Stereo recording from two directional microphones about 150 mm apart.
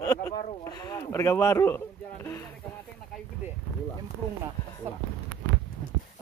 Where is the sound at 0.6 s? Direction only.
25° left (ahead or behind).